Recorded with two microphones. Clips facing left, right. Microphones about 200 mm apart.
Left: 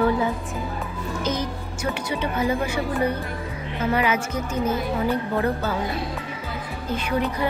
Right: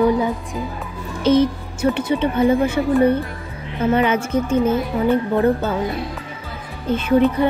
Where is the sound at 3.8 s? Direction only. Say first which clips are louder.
Right 5 dB; 25° right (ahead or behind).